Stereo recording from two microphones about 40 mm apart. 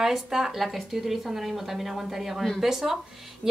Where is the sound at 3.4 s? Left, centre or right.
Centre.